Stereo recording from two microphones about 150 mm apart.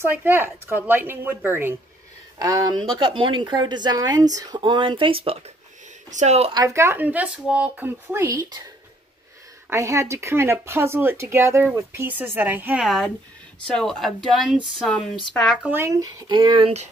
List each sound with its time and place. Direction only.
0.0 s speech: 15° right (ahead or behind); by 5.4 s 40° right (ahead or behind)
6.0 s speech: 50° right (ahead or behind)
6.5 s speech: 20° right (ahead or behind)
9.7 s speech: 20° right (ahead or behind)
12.8 s speech: centre (ahead or behind)
15.6 s speech: 15° right (ahead or behind); by 16.9 s 45° right (ahead or behind)